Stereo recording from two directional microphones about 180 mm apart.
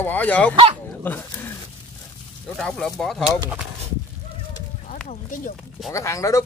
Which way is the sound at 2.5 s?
5° left (ahead or behind).